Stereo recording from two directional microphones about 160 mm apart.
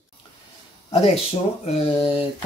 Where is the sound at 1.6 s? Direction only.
35° left (ahead or behind).